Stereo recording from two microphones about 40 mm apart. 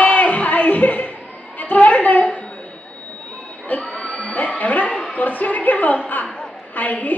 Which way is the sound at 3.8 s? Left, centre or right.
Left.